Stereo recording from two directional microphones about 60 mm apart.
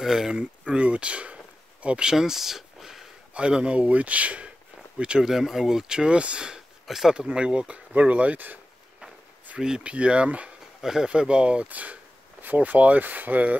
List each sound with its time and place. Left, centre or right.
0.0 s speech: centre
0.4 s a sound: right; by 3.1 s centre
3.3 s speech: centre
5.2 s speech: centre; by 8.5 s right
9.6 s speech: centre
10.8 s speech: centre; by 13.6 s right